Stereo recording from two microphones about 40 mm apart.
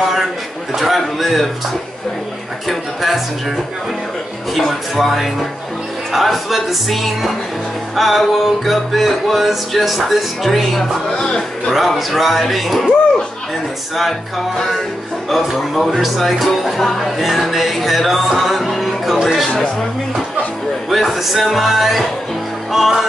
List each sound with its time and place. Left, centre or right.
0.0 s a sound: centre
0.7 s music: centre
2.7 s music: centre
4.6 s music: centre
11.1 s speech: centre
11.7 s music: centre
15.2 s music: centre
20.9 s music: centre